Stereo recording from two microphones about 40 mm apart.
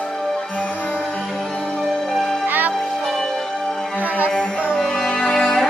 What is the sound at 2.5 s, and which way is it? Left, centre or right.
Music, right.